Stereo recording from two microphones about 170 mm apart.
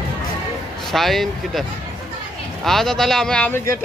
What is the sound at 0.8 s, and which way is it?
Speech, centre (ahead or behind).